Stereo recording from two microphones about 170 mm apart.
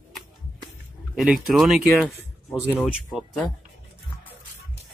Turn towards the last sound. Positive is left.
turn(degrees=5)  # may be behind; listen again after turning